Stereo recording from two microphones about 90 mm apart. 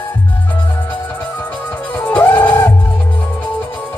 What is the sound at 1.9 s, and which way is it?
Music, 15° left (ahead or behind).